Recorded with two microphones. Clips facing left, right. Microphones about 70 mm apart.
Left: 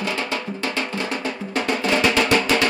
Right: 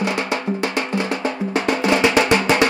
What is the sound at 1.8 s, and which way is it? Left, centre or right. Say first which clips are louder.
Music: right 3 dB; centre.